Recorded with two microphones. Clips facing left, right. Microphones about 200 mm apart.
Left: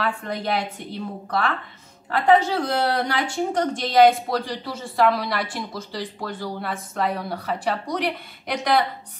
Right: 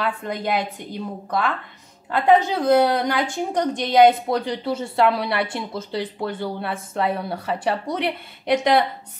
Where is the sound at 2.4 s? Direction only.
20° right (ahead or behind).